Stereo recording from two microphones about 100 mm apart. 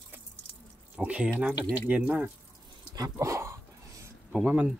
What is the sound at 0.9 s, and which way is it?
Speech, 15° right (ahead or behind).